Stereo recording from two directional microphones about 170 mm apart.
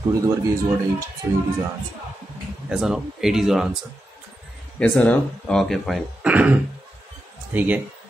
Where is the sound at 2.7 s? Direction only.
5° right (ahead or behind).